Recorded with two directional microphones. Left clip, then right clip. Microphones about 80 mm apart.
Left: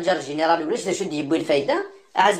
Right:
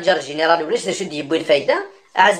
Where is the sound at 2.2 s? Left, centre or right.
Left.